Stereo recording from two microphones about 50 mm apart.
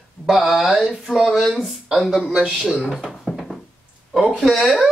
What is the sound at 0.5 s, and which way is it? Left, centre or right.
Speech, centre.